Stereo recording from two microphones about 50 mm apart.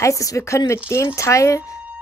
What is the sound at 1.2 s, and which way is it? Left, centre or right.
Speech, left.